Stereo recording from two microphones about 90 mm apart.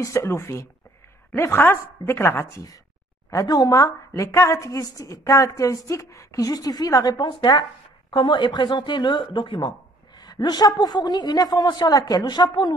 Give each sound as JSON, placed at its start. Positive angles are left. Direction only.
{"t": 0.0, "sound": "a woman's voice", "side_deg": 35}
{"t": 3.3, "sound": "a woman's voice", "side_deg": 40}
{"t": 7.2, "sound": "speech", "side_deg": 60}
{"t": 9.7, "sound": "a woman's voice", "side_deg": 45}